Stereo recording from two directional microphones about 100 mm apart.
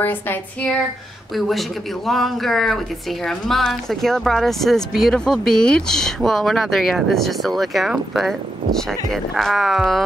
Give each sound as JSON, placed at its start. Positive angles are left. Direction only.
{"t": 0.0, "sound": "speech", "side_deg": 20}
{"t": 1.3, "sound": "speech", "side_deg": 0}